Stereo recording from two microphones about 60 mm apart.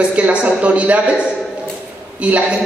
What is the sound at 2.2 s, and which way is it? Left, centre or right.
Speech, right.